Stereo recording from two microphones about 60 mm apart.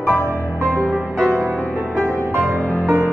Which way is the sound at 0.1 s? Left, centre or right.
Left.